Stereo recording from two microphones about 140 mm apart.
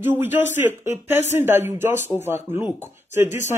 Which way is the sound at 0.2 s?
15° right (ahead or behind).